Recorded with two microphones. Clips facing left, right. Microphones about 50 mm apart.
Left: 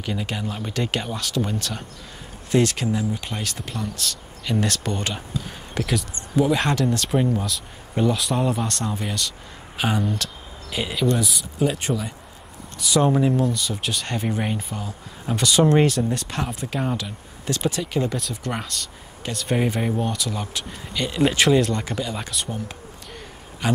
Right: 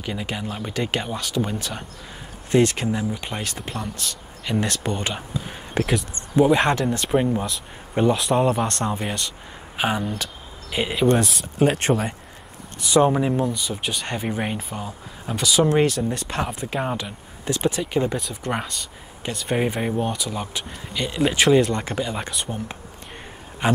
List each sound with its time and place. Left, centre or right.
0.0 s speech: centre
2.5 s speech: right
9.8 s speech: centre
11.1 s speech: right
12.9 s speech: centre
15.2 s speech: centre
16.5 s speech: centre
21.7 s speech: right
23.6 s speech: right